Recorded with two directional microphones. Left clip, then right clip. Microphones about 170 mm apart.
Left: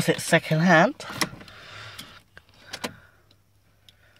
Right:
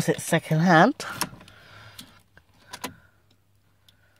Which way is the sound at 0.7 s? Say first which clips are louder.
Right 2 dB; 80° right.